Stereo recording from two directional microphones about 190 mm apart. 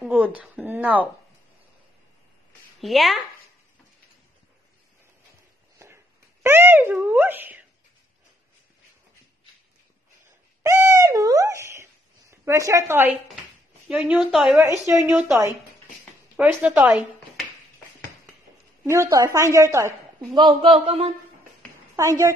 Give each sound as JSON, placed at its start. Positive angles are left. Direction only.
{"t": 0.0, "sound": "a sound", "side_deg": -5}
{"t": 2.8, "sound": "a woman's voice", "side_deg": 0}
{"t": 5.8, "sound": "a sound", "side_deg": -15}
{"t": 6.4, "sound": "a woman's voice", "side_deg": -10}
{"t": 10.6, "sound": "owl", "side_deg": -15}
{"t": 13.8, "sound": "a woman's voice", "side_deg": -5}
{"t": 16.3, "sound": "a woman's voice", "side_deg": -10}
{"t": 18.9, "sound": "a woman's voice", "side_deg": -15}
{"t": 21.9, "sound": "a child's voice", "side_deg": -15}